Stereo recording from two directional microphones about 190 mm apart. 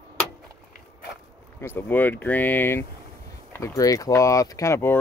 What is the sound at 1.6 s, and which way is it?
Speech, 10° left (ahead or behind).